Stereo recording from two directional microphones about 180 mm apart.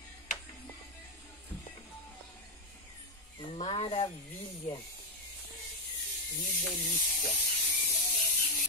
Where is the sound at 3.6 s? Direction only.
35° left (ahead or behind).